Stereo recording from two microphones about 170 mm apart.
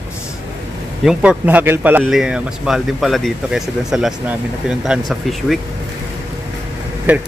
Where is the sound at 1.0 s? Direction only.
10° right (ahead or behind).